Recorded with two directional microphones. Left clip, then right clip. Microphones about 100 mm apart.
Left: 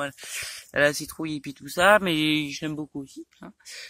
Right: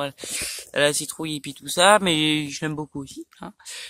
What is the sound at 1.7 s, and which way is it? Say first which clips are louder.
Speech: right 2 dB; 25° right (ahead or behind).